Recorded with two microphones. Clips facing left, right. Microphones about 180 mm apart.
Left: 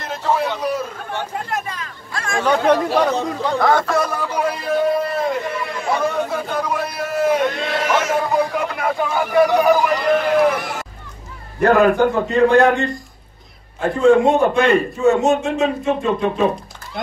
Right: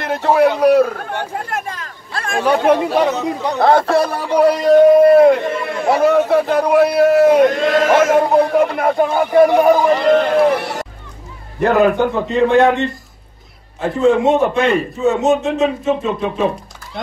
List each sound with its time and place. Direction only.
0.0 s a man's voice: 65° right (ahead or behind)
2.1 s speech: 35° right (ahead or behind)
2.4 s speech: 5° right (ahead or behind)
3.5 s speech: 30° right (ahead or behind)
4.6 s a man's voice: 55° right (ahead or behind)
6.0 s a man's voice: 70° right (ahead or behind); by 9.0 s 50° right (ahead or behind)
9.1 s speech: 25° right (ahead or behind)
10.3 s music: 30° right (ahead or behind)
11.6 s a man's voice: centre (ahead or behind)
14.2 s a man's voice: centre (ahead or behind)